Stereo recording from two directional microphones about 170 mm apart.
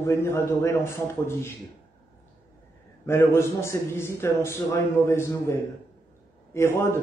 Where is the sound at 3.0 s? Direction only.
15° left (ahead or behind).